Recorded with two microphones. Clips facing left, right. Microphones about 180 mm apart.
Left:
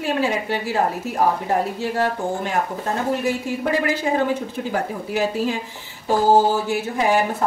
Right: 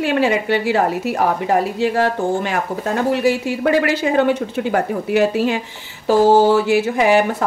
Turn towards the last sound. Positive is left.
turn(degrees=-80)